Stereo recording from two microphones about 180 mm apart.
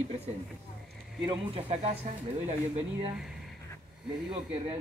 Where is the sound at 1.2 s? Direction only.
35° right (ahead or behind).